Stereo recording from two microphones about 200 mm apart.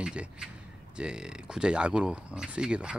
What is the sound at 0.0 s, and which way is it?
A man's voice, 5° right (ahead or behind).